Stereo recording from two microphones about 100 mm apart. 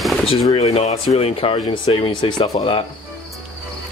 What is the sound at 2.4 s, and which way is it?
Speech, 80° left.